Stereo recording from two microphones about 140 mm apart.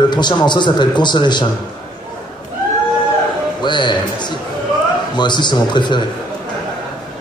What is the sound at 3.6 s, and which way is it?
A man's voice, 35° left (ahead or behind).